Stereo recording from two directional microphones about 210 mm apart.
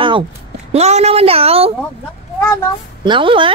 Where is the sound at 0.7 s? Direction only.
30° right (ahead or behind).